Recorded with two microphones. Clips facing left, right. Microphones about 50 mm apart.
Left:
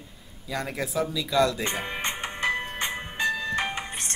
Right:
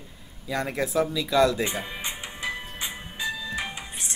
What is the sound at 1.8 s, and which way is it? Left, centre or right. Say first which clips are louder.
Music: left 4 dB; left.